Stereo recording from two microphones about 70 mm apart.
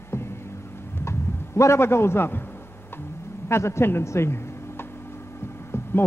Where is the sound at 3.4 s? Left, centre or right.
Left.